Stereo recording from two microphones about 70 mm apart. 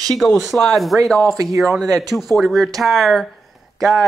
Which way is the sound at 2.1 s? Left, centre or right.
Centre.